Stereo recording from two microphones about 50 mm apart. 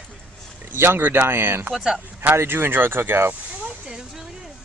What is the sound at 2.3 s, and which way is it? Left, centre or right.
Speech, right.